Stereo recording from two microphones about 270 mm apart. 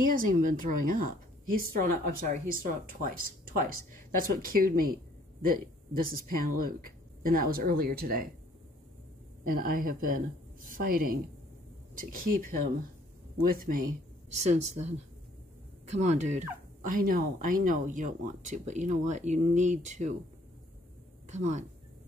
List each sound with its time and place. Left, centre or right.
0.1 s speech: right
9.4 s speech: right
14.3 s speech: right
21.3 s speech: right